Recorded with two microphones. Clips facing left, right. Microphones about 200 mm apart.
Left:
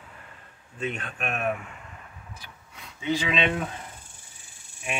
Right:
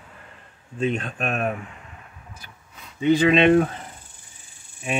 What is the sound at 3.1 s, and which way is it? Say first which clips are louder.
Speech: right 10 dB; 55° right (ahead or behind).